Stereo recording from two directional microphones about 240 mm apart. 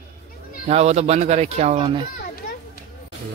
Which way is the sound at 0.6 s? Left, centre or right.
Right.